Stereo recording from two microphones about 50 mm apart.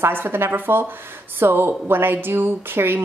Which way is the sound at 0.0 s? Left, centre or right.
Right.